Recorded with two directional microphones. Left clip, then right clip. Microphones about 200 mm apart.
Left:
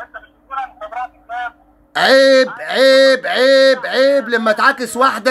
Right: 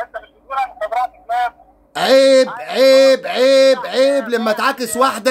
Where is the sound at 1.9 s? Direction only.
5° right (ahead or behind).